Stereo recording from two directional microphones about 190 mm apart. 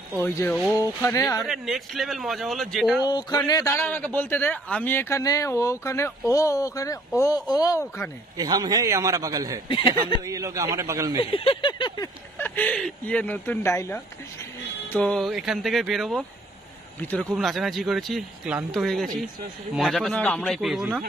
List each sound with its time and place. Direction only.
0.2 s a man's voice: 10° left (ahead or behind)
1.4 s speech: centre (ahead or behind)
3.1 s a man's voice: 20° left (ahead or behind)
8.4 s a man's voice: 20° right (ahead or behind)
9.7 s speech: 25° left (ahead or behind)
10.2 s a man's voice: 15° right (ahead or behind)
11.1 s a sound: 25° left (ahead or behind)
12.4 s a man's voice: 10° left (ahead or behind)